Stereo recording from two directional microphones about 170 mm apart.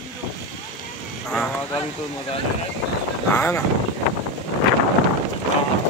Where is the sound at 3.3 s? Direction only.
15° left (ahead or behind).